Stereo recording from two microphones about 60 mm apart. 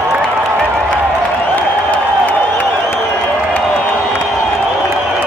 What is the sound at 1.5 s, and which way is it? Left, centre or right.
Applause, left.